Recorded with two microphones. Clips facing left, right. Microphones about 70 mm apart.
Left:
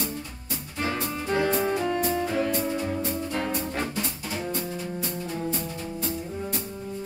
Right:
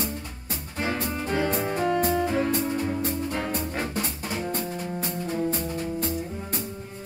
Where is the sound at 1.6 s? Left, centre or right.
Right.